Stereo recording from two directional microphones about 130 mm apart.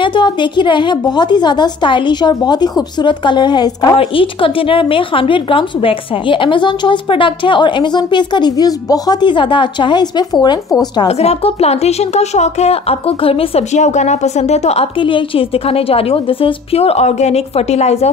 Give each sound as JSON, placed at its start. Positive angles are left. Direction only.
{"t": 0.0, "sound": "a woman's voice", "side_deg": 35}
{"t": 3.9, "sound": "a woman's voice", "side_deg": 45}
{"t": 11.1, "sound": "a woman's voice", "side_deg": 55}